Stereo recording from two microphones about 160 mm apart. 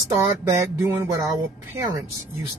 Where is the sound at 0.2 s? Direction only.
15° right (ahead or behind).